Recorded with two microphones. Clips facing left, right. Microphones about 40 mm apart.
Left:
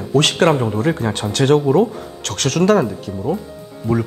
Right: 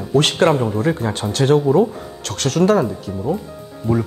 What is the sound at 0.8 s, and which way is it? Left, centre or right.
Speech, left.